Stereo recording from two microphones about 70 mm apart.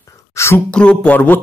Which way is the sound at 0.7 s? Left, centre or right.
Centre.